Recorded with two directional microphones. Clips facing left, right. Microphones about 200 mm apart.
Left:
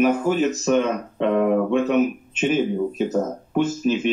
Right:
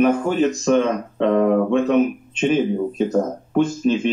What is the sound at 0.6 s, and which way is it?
Speech, 30° right (ahead or behind).